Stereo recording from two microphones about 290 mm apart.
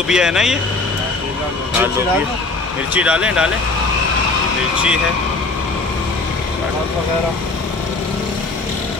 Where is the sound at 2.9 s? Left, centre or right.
Centre.